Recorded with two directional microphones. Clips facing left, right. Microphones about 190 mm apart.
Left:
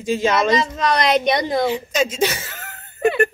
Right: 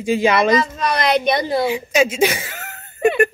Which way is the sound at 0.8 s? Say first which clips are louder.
Even; 20° left (ahead or behind).